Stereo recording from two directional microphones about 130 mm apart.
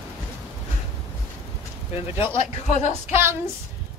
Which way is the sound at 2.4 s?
60° left (ahead or behind).